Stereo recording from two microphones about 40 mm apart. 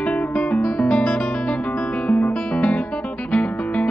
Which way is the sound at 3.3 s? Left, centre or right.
Left.